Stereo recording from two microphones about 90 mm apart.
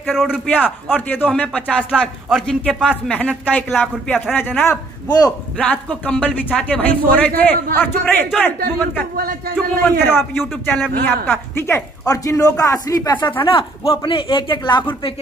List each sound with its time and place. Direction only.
0.1 s a man's voice: 5° right (ahead or behind)
0.8 s a man's voice: 20° left (ahead or behind)
12.1 s speech: 40° left (ahead or behind)
13.4 s speech: 75° left (ahead or behind)